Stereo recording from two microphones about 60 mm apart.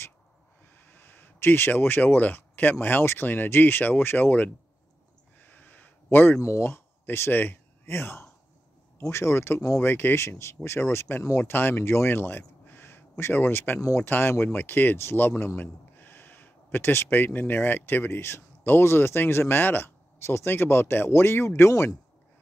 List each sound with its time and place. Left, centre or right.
0.7 s speech: left
5.4 s a sound: left
6.4 s speech: left
6.7 s a man's voice: left